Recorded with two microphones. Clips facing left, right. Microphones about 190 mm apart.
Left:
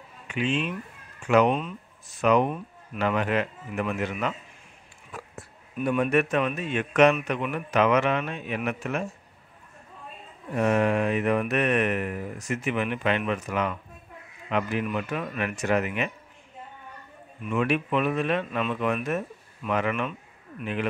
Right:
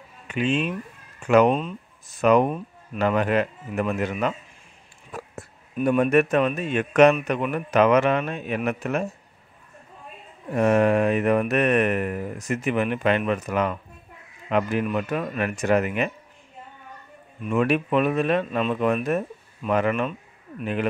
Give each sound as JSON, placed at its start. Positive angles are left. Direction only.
{"t": 0.3, "sound": "speech", "side_deg": -45}
{"t": 1.2, "sound": "mantra", "side_deg": -40}
{"t": 5.9, "sound": "mantra", "side_deg": -45}
{"t": 10.5, "sound": "mantra", "side_deg": -45}
{"t": 17.5, "sound": "speech", "side_deg": -45}